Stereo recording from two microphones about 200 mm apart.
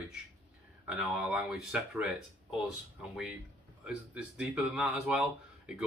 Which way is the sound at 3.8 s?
5° right (ahead or behind).